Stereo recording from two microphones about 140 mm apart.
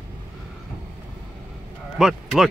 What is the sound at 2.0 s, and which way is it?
Speech, 5° right (ahead or behind).